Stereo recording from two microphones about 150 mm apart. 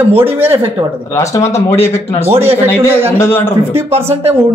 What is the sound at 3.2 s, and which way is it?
Speech, 15° left (ahead or behind).